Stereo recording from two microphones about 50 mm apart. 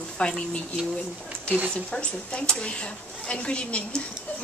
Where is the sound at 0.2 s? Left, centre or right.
Left.